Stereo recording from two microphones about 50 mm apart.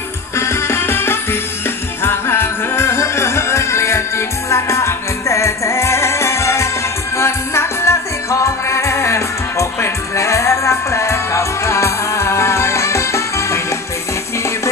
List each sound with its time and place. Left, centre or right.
0.4 s music: left